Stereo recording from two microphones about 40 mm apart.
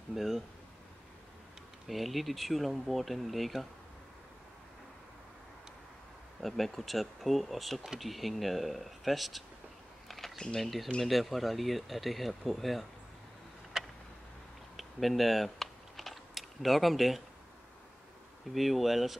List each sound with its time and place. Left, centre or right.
0.1 s speech: centre
1.9 s speech: centre
6.4 s speech: centre
10.0 s a sound: centre
10.3 s speech: centre
10.6 s speech: centre
14.8 s typing: centre
18.5 s speech: centre